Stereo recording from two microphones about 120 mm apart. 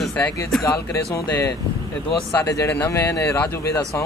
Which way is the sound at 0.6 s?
25° left (ahead or behind).